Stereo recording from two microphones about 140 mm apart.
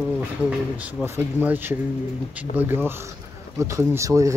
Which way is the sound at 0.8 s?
10° right (ahead or behind).